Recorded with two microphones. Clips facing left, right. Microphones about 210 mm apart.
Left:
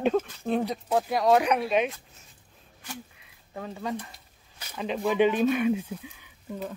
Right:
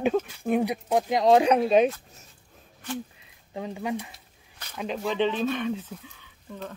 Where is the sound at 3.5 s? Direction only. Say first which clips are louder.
Right 2 dB; 15° right (ahead or behind).